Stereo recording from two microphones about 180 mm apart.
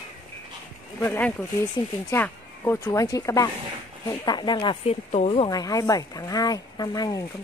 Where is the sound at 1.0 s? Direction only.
10° left (ahead or behind).